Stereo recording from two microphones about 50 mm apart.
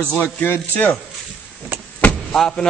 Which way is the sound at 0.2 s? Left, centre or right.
Left.